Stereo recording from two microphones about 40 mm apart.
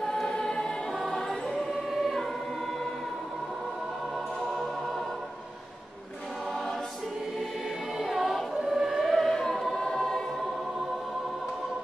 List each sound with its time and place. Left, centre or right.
0.0 s choir: centre
1.7 s music: centre
8.0 s choir: centre
8.6 s music: centre
8.9 s music: centre